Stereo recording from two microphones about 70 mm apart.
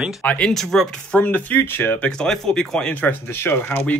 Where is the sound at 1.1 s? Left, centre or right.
Left.